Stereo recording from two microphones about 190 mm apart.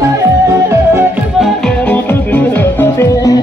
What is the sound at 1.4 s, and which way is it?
Music, 5° left (ahead or behind).